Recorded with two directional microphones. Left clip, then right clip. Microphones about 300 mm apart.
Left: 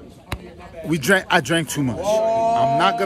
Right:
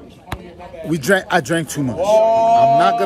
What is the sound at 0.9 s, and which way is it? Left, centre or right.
Speech, centre.